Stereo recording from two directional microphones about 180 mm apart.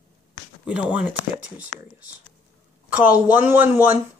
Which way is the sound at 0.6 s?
5° right (ahead or behind).